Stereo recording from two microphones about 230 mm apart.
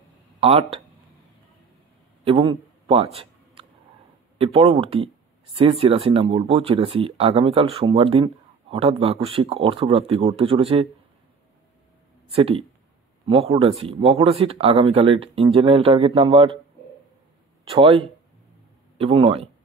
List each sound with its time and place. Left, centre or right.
0.4 s speech: right
2.2 s a sound: right
4.4 s speech: right
12.3 s speech: right
17.6 s speech: right